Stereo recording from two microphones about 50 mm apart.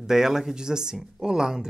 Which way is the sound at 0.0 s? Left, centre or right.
Centre.